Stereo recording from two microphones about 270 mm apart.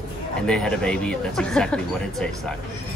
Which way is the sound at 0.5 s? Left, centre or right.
Centre.